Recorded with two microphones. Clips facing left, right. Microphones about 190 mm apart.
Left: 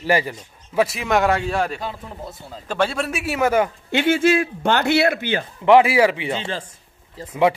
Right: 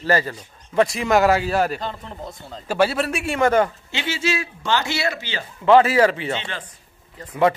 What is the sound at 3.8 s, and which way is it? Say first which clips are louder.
Speech: left 8 dB; 55° left (ahead or behind).